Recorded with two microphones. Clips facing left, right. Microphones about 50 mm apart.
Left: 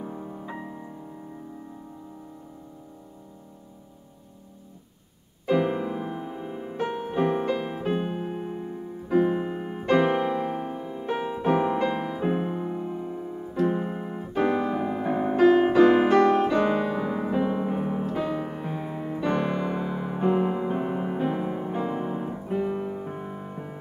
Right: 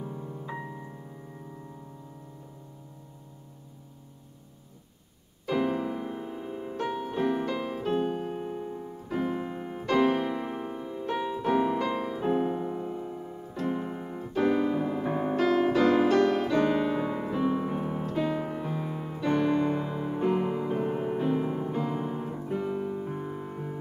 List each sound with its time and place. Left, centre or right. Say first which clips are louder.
0.0 s music: left 2 dB; left
0.5 s music: left 1 dB; centre
5.5 s music: left 4 dB; centre
13.7 s keyboard: left 4 dB; left
14.6 s music: left 1 dB; centre
16.8 s piano: left 1 dB; centre
17.2 s music: left 2 dB; left
19.6 s music: even; centre